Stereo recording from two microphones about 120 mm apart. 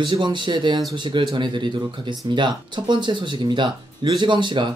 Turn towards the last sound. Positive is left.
turn(degrees=-40)  # may be behind; listen again after turning